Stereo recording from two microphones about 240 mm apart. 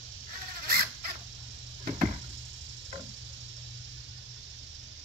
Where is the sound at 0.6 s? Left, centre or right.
Right.